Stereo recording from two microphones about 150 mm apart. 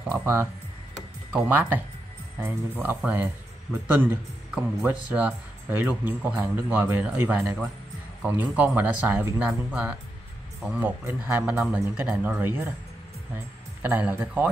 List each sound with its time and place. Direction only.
0.0 s speech: 15° right (ahead or behind)
13.8 s speech: 10° right (ahead or behind)